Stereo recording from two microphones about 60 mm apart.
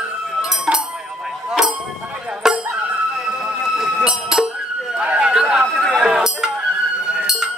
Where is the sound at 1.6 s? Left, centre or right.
Centre.